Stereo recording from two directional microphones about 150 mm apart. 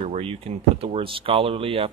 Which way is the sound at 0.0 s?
45° right (ahead or behind).